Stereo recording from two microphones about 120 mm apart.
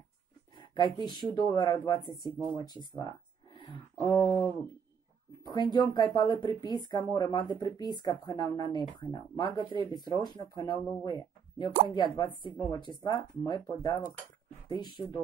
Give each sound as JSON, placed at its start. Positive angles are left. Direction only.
{"t": 0.6, "sound": "speech", "side_deg": 40}
{"t": 2.9, "sound": "a sound", "side_deg": 40}
{"t": 5.5, "sound": "speech", "side_deg": 40}